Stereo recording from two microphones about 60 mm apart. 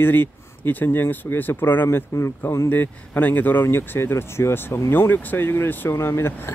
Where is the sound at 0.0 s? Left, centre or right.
Left.